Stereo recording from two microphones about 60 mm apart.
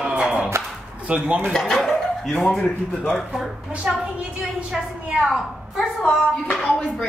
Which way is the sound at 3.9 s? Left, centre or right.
Centre.